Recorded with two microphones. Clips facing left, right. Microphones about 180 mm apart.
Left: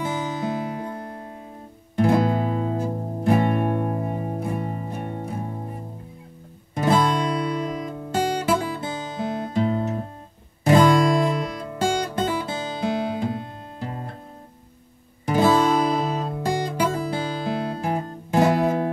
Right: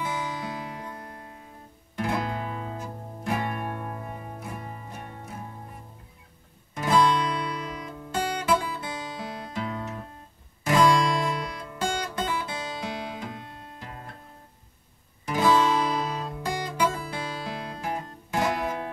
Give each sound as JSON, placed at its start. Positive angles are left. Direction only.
{"t": 0.4, "sound": "music", "side_deg": 30}
{"t": 7.9, "sound": "guitar", "side_deg": 40}
{"t": 10.6, "sound": "music", "side_deg": 30}
{"t": 15.2, "sound": "music", "side_deg": 30}